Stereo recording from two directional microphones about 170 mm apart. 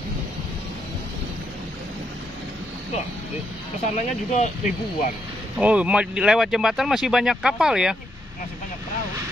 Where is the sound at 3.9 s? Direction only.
45° left (ahead or behind).